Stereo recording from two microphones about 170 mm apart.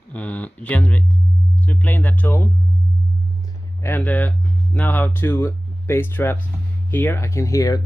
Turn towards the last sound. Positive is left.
turn(degrees=20)  # may be behind; listen again after turning